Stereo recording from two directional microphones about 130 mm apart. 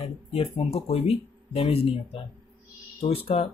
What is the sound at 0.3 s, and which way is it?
Speech, 50° left (ahead or behind).